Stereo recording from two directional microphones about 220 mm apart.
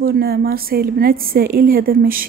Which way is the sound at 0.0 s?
45° right (ahead or behind).